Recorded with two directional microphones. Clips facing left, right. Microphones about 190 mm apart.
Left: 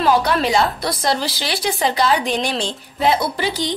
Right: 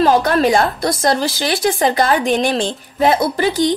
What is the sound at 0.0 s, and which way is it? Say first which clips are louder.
A woman's voice: right 4 dB; 45° right (ahead or behind).